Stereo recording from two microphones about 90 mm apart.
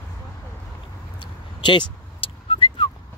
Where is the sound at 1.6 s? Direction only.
70° left (ahead or behind).